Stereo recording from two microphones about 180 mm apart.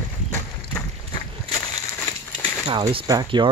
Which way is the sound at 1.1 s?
25° left (ahead or behind).